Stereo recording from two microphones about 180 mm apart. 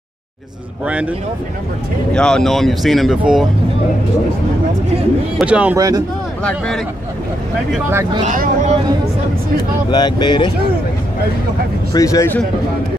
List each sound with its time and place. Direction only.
0.8 s speech: 10° right (ahead or behind)
2.1 s speech: 5° left (ahead or behind)
5.4 s speech: 5° right (ahead or behind)
5.8 s speech: 20° right (ahead or behind)
7.9 s speech: 15° right (ahead or behind)
8.2 s speech: 40° right (ahead or behind)
9.8 s speech: 25° left (ahead or behind)
11.9 s speech: 20° left (ahead or behind)